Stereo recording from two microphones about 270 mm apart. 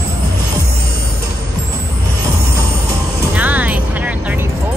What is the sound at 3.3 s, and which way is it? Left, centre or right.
Music, centre.